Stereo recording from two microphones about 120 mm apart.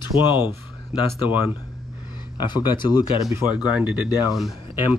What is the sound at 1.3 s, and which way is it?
Speech, 15° right (ahead or behind).